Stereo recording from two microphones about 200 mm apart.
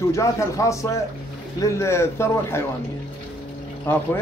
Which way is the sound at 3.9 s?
10° left (ahead or behind).